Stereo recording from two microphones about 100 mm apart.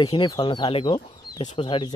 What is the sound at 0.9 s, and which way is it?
Speech, 45° left (ahead or behind).